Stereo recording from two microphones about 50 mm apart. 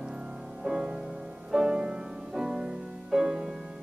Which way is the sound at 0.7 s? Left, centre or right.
Centre.